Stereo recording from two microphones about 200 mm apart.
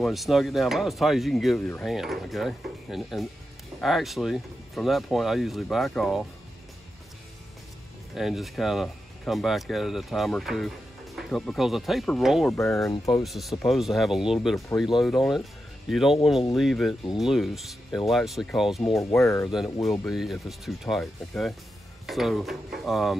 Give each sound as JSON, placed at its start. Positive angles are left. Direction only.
{"t": 0.0, "sound": "speech", "side_deg": 0}
{"t": 8.1, "sound": "speech", "side_deg": 0}
{"t": 12.5, "sound": "speech", "side_deg": 15}
{"t": 13.2, "sound": "speech", "side_deg": 0}
{"t": 19.2, "sound": "speech", "side_deg": 15}
{"t": 19.5, "sound": "speech", "side_deg": 0}